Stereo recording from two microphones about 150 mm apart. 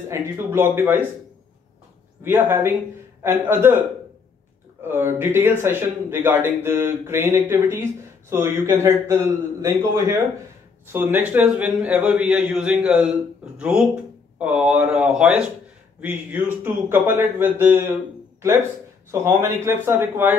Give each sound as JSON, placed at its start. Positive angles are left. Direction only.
{"t": 0.1, "sound": "speech", "side_deg": -15}
{"t": 2.2, "sound": "speech", "side_deg": -15}
{"t": 4.8, "sound": "speech", "side_deg": -15}
{"t": 19.0, "sound": "speech", "side_deg": -20}